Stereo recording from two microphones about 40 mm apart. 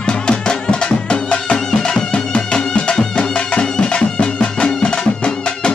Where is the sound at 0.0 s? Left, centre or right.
Left.